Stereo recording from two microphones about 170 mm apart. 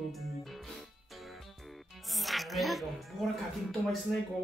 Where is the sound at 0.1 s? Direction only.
Centre (ahead or behind).